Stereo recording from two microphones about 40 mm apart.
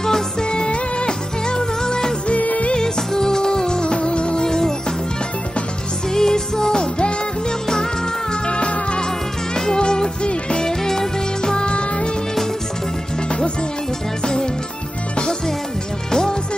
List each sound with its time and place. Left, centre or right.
0.0 s music: centre
2.2 s music: left
2.7 s music: centre
6.1 s music: centre
8.3 s music: left
14.2 s music: centre
16.1 s music: centre